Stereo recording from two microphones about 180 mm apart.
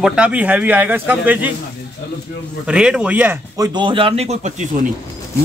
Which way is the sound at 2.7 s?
5° right (ahead or behind).